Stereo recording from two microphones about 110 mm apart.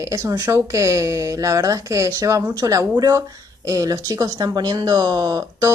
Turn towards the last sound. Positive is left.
turn(degrees=-35)  # may be behind; listen again after turning